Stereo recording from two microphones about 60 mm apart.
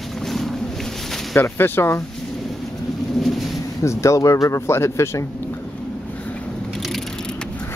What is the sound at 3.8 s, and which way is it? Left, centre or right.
Speech, left.